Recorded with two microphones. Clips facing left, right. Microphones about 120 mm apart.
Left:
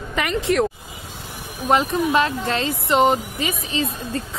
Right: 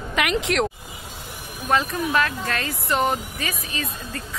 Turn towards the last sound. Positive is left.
turn(degrees=25)  # may be behind; listen again after turning